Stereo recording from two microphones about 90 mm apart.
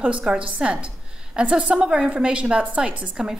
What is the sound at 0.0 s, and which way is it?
A woman's voice, 10° right (ahead or behind).